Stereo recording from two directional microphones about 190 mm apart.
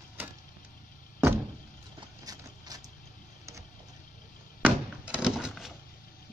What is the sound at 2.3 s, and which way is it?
Clip-clop, 20° right (ahead or behind).